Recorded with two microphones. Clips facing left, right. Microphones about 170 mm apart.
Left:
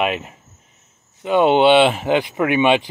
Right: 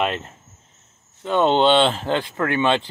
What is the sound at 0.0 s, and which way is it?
Speech, 10° left (ahead or behind).